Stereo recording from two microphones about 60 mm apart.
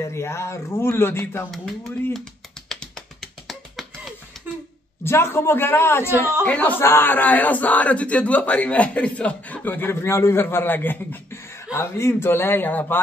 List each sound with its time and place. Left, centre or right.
0.0 s speech: left
2.7 s tap: centre
5.0 s speech: left
6.4 s a man's voice: left
6.8 s a man's voice: left
9.8 s speech: left
10.4 s a man's voice: left
11.7 s a man's voice: left